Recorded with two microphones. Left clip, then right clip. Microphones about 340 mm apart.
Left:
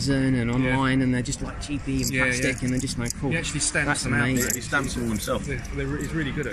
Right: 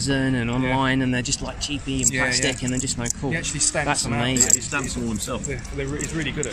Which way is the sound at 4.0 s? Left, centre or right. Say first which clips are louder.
Right 2 dB; centre.